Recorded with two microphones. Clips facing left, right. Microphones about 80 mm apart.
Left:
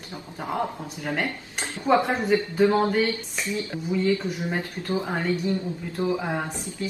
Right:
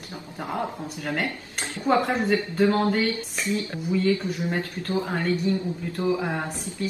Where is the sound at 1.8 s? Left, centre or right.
Centre.